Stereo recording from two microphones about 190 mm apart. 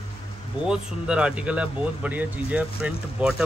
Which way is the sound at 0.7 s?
5° right (ahead or behind).